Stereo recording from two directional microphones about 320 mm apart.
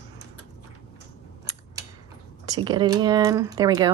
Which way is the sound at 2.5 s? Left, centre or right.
Centre.